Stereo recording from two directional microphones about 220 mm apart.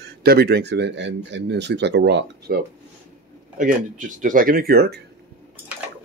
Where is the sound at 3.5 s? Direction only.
35° right (ahead or behind).